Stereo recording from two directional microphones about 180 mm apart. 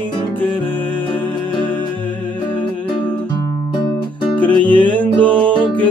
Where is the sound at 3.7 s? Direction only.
25° left (ahead or behind).